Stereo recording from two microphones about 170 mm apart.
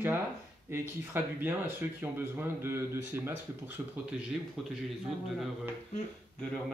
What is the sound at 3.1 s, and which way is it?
Speech, 10° right (ahead or behind).